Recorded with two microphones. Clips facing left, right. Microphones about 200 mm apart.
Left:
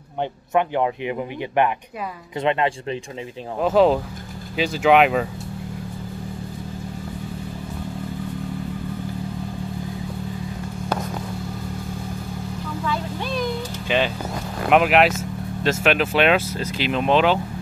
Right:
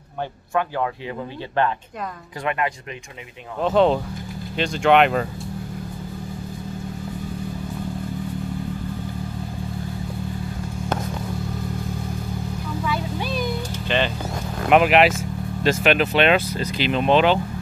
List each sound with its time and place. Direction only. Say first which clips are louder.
0.6 s speech: left 3 dB; 20° left (ahead or behind)
3.6 s speech: left 1 dB; 5° left (ahead or behind)
12.8 s music: even; 5° right (ahead or behind)
13.8 s vehicle: left 1 dB; 5° left (ahead or behind)
14.7 s speech: right 1 dB; centre (ahead or behind)